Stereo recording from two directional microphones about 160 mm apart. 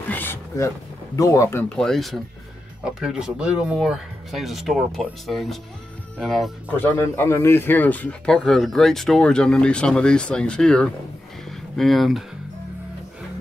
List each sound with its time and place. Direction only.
0.1 s a sound: 15° left (ahead or behind)
1.1 s speech: 20° left (ahead or behind)
1.7 s speech: 5° left (ahead or behind)
7.0 s speech: 15° left (ahead or behind); by 12.3 s centre (ahead or behind)